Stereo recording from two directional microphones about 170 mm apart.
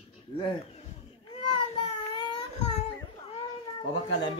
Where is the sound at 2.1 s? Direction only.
30° left (ahead or behind).